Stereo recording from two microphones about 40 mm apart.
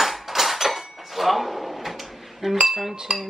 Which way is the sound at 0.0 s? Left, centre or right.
Centre.